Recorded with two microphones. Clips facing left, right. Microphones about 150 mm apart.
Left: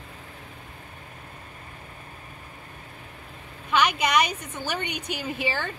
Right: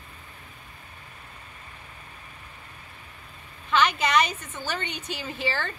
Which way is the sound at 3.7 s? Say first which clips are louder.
Even; 15° left (ahead or behind).